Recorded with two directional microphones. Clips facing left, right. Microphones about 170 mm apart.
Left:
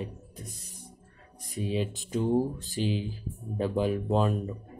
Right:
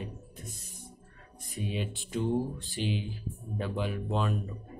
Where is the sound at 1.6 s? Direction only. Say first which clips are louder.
Left 5 dB; 35° left (ahead or behind).